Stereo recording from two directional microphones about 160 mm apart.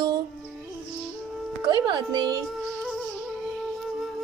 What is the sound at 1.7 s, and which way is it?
Speech, 25° right (ahead or behind).